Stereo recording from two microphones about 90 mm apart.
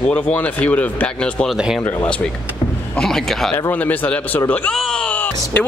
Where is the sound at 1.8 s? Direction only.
20° left (ahead or behind).